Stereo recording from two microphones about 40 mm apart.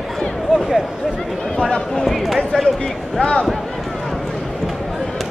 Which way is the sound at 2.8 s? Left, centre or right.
Left.